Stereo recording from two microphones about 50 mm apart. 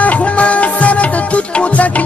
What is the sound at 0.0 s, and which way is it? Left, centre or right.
Music, left.